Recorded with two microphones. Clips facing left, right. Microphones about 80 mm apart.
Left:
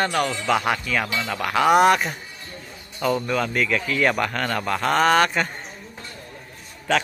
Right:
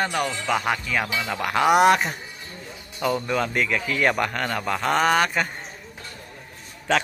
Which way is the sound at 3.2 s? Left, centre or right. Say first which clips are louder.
Left 1 dB; right.